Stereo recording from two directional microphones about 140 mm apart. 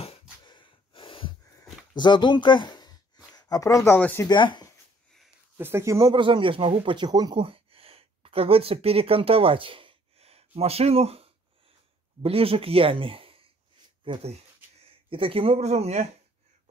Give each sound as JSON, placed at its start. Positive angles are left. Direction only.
{"t": 0.4, "sound": "gasp", "side_deg": 35}
{"t": 1.4, "sound": "a sound", "side_deg": 30}
{"t": 3.3, "sound": "speech", "side_deg": 25}
{"t": 4.3, "sound": "speech", "side_deg": 35}
{"t": 5.6, "sound": "speech", "side_deg": -20}
{"t": 6.1, "sound": "speech", "side_deg": -35}
{"t": 7.4, "sound": "a sound", "side_deg": -45}
{"t": 12.2, "sound": "speech", "side_deg": -45}